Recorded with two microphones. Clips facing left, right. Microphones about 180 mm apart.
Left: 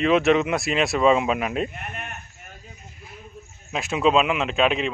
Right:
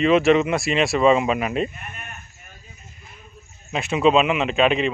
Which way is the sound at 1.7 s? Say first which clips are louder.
Left 4 dB; 65° left (ahead or behind).